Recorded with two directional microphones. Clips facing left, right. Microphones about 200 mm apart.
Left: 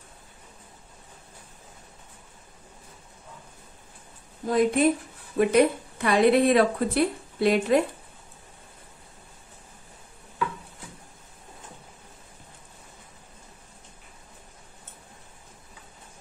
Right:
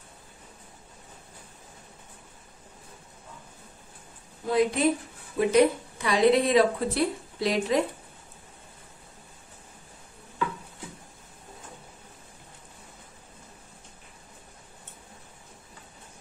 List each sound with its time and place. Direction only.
4.5 s a woman's voice: 50° left (ahead or behind)